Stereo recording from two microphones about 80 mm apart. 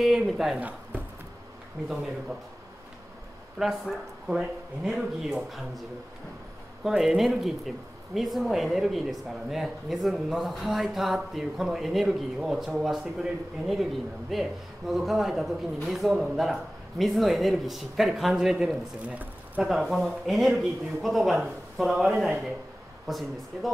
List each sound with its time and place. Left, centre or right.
0.0 s speech: centre
0.6 s speech: right
1.8 s speech: centre
3.5 s speech: centre
7.0 s speech: centre
19.0 s speech: right
19.6 s speech: centre